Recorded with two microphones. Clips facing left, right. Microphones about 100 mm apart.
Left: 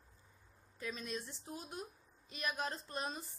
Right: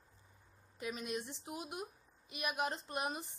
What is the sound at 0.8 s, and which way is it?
A woman's voice, 15° right (ahead or behind).